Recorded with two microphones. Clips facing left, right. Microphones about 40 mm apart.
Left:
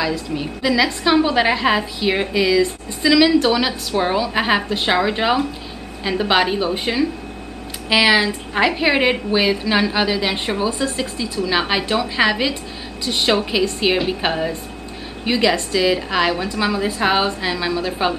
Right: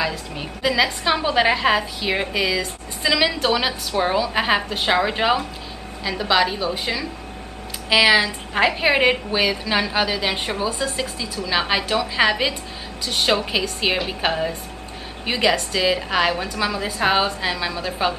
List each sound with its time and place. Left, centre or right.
0.0 s a woman's voice: centre
1.2 s a woman's voice: centre
2.3 s a woman's voice: centre
4.0 s a woman's voice: centre
6.0 s a woman's voice: left
7.9 s a woman's voice: centre
13.0 s a woman's voice: centre
13.5 s a woman's voice: centre
15.7 s a woman's voice: centre